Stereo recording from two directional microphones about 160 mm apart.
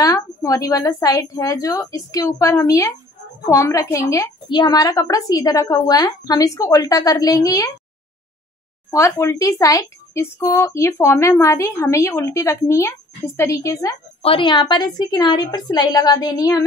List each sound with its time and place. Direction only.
0.0 s a woman's voice: 20° left (ahead or behind)
8.9 s a woman's voice: 20° left (ahead or behind)
14.2 s a woman's voice: 35° left (ahead or behind)